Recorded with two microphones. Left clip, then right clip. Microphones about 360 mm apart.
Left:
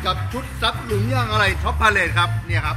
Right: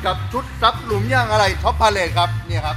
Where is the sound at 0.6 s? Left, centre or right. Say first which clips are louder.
Right 5 dB; centre.